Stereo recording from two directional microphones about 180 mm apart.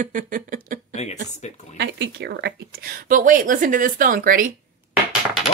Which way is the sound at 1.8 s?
70° right (ahead or behind).